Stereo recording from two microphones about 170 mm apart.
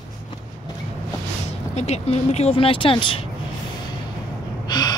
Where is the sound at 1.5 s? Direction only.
40° left (ahead or behind).